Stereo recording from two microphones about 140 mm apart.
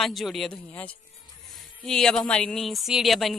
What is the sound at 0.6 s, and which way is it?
Speech, 10° left (ahead or behind).